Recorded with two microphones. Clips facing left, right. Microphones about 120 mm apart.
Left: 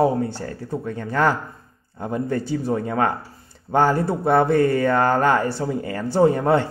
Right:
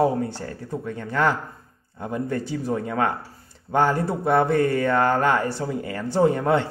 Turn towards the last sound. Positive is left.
turn(degrees=35)  # may be behind; listen again after turning